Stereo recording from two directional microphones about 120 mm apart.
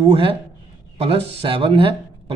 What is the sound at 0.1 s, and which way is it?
A man's voice, 50° right (ahead or behind).